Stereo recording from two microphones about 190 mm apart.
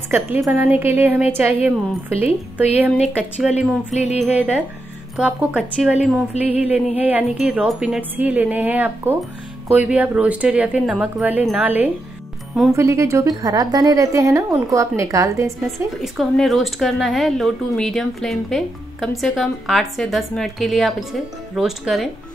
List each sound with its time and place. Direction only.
0.5 s a woman's voice: 10° right (ahead or behind)
3.9 s music: 35° left (ahead or behind)
4.2 s a woman's voice: 10° right (ahead or behind)
16.0 s speech: centre (ahead or behind)